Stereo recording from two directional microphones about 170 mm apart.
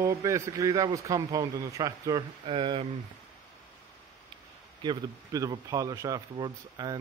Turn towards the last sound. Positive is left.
turn(degrees=-20)  # may be behind; listen again after turning